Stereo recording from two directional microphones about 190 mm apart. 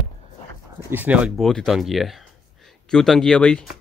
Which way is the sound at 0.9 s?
10° right (ahead or behind).